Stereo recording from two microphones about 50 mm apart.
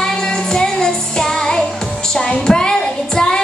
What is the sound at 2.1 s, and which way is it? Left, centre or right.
Child singing, centre.